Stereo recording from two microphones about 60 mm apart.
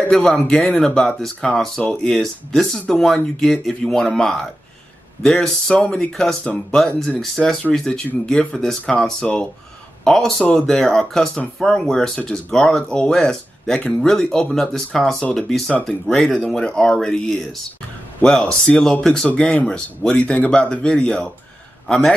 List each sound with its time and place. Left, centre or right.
0.2 s speech: centre
10.0 s a man's voice: centre